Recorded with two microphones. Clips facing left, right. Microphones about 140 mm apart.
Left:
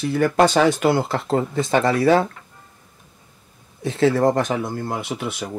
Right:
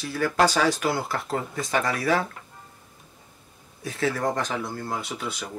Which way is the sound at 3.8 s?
25° left (ahead or behind).